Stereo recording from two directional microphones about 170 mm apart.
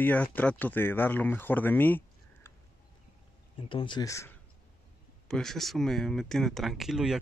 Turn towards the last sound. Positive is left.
turn(degrees=-5)  # may be behind; listen again after turning